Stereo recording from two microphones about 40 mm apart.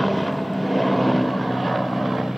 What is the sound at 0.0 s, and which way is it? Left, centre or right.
Vehicle, centre.